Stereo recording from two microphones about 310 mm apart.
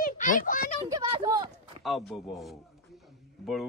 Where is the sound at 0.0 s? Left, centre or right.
Left.